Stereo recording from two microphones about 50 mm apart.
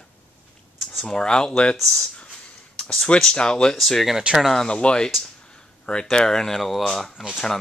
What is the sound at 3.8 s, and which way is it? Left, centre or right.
Speech, centre.